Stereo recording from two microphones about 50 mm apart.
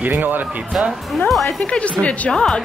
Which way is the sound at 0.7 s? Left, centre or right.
Centre.